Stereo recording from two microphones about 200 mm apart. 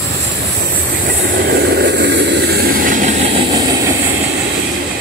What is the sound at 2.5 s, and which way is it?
Train, 40° right (ahead or behind).